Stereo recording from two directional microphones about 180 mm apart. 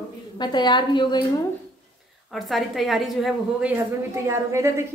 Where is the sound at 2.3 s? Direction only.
Centre (ahead or behind).